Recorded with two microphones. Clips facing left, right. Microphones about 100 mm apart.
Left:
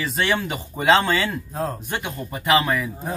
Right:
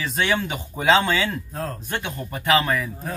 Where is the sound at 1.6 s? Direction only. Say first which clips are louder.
Left 7 dB; 20° left (ahead or behind).